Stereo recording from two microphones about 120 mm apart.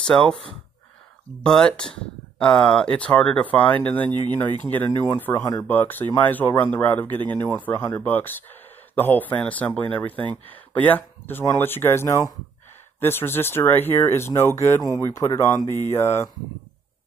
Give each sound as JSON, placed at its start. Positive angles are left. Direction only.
{"t": 0.0, "sound": "speech", "side_deg": 5}